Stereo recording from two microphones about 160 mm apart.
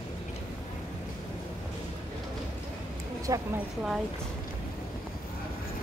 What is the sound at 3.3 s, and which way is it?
Speech, 20° right (ahead or behind).